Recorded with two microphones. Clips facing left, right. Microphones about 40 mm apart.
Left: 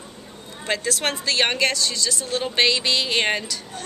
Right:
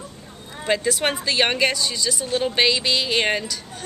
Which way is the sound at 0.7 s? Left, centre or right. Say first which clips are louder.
Right 3 dB; centre.